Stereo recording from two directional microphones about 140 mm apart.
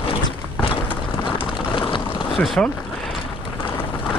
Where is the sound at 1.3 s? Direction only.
35° left (ahead or behind).